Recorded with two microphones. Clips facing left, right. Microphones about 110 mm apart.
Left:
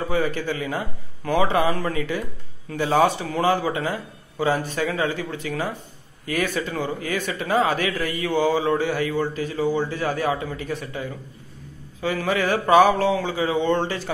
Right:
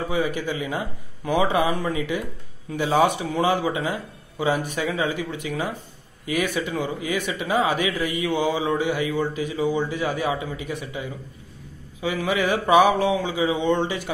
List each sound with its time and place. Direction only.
0.1 s a man's voice: 15° right (ahead or behind)